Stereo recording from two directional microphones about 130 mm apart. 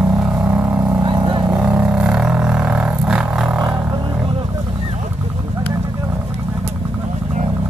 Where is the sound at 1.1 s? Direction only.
30° right (ahead or behind).